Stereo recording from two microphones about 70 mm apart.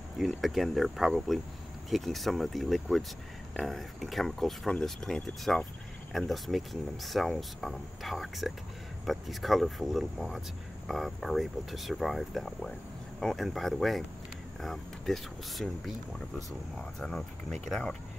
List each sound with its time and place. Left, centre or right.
0.2 s speech: centre
17.6 s speech: centre